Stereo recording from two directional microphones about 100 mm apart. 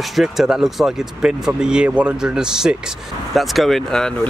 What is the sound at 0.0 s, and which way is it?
Speech, centre (ahead or behind).